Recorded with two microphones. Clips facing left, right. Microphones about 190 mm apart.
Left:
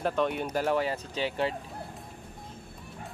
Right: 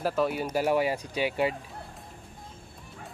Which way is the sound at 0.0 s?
5° right (ahead or behind).